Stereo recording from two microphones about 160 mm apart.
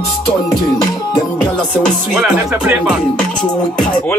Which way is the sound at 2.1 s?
5° right (ahead or behind).